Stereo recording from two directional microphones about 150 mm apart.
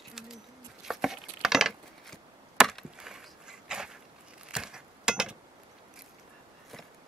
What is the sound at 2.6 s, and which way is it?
Chop, 5° right (ahead or behind).